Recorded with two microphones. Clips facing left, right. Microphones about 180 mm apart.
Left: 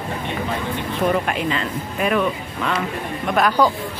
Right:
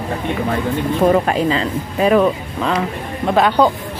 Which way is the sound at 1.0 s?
35° right (ahead or behind).